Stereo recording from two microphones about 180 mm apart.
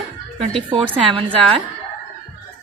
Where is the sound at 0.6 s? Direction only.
30° right (ahead or behind).